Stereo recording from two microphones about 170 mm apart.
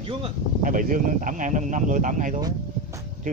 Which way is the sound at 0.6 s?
50° right (ahead or behind).